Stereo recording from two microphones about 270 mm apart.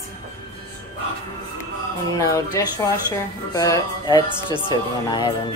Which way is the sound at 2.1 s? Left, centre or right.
Centre.